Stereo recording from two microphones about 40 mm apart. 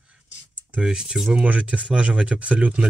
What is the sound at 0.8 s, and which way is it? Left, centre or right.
Speech, centre.